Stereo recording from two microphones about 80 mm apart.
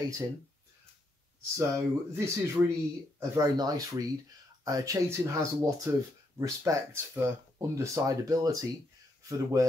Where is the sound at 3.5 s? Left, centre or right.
Right.